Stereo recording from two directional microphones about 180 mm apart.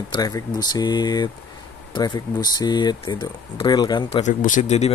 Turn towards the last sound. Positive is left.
turn(degrees=40)  # may be behind; listen again after turning